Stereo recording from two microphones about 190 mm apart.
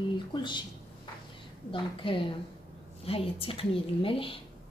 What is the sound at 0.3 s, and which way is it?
Speech, 25° left (ahead or behind).